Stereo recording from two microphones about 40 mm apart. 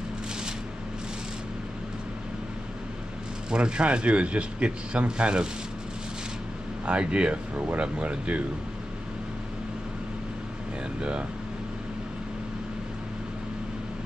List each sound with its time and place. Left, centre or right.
3.4 s speech: right
6.9 s speech: right
7.5 s speech: right
7.8 s speech: right
11.0 s speech: right